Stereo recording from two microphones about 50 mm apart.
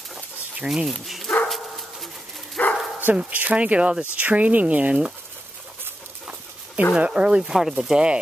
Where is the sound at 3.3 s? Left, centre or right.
Right.